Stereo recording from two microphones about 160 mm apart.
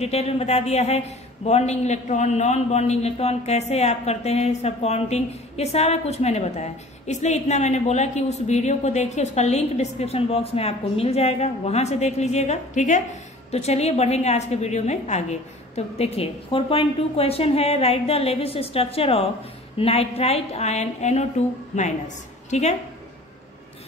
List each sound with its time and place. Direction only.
0.0 s a woman's voice: 40° left (ahead or behind)